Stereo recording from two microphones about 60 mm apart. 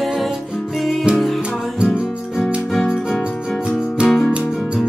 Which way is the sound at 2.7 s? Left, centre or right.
Centre.